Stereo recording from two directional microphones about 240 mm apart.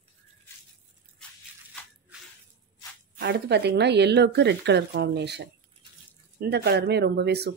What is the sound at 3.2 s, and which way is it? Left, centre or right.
Speech, right.